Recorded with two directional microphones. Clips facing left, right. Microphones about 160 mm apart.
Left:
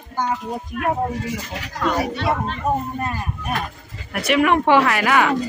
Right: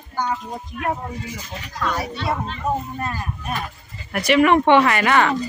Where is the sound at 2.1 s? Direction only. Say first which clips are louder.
Left 3 dB; 55° left (ahead or behind).